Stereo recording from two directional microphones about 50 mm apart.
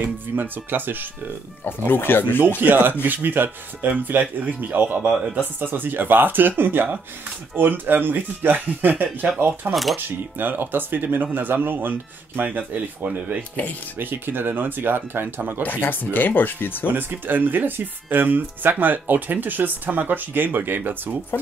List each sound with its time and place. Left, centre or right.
0.0 s speech: right
1.9 s speech: left
2.6 s speech: right
9.7 s speech: centre
9.9 s speech: right
13.9 s speech: right
15.6 s speech: left
16.8 s speech: right